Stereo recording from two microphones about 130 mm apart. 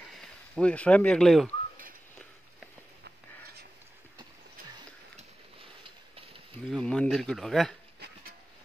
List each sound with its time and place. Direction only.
0.2 s speech: 10° left (ahead or behind)
5.6 s a sound: 45° right (ahead or behind)
6.7 s speech: 5° left (ahead or behind)